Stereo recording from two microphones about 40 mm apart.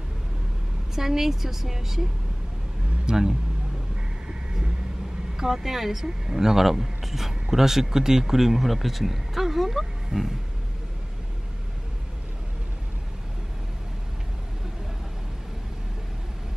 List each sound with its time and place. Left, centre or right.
0.9 s speech: centre
3.1 s speech: centre
4.3 s vehicle: centre
5.4 s speech: centre